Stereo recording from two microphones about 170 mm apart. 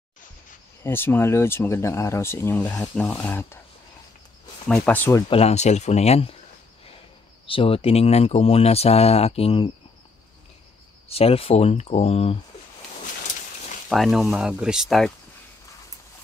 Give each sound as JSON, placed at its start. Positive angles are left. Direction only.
{"t": 0.8, "sound": "speech", "side_deg": 15}
{"t": 4.7, "sound": "speech", "side_deg": 10}
{"t": 5.3, "sound": "speech", "side_deg": 40}
{"t": 7.4, "sound": "speech", "side_deg": 30}
{"t": 11.1, "sound": "speech", "side_deg": 35}
{"t": 13.8, "sound": "speech", "side_deg": 0}